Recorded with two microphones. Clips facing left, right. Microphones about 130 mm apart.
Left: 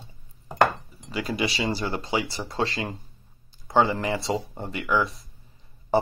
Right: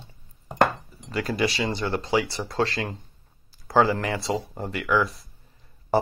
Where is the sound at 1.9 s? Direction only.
Centre (ahead or behind).